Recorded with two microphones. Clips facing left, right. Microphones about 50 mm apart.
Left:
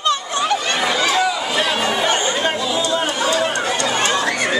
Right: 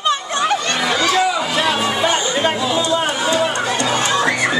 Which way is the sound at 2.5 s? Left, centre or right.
Centre.